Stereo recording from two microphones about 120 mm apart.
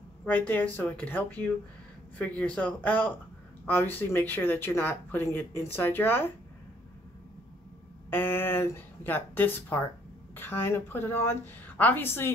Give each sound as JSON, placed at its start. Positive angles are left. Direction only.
{"t": 0.2, "sound": "a woman's voice", "side_deg": 15}
{"t": 8.1, "sound": "a woman's voice", "side_deg": 20}